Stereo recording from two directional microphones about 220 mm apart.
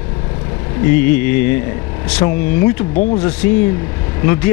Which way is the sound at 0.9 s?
10° left (ahead or behind).